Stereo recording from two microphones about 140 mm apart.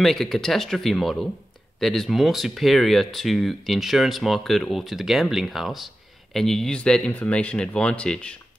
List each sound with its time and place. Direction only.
0.0 s speech: centre (ahead or behind)